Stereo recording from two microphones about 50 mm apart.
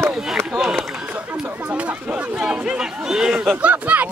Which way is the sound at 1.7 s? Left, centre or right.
Right.